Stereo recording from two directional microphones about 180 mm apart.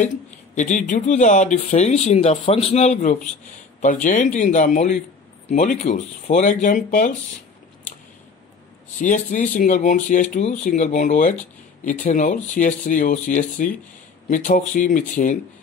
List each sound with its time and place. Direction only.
0.6 s speech: 45° left (ahead or behind)
8.9 s speech: 45° left (ahead or behind)